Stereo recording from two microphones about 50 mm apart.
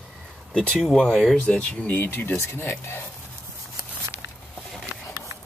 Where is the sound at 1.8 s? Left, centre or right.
Left.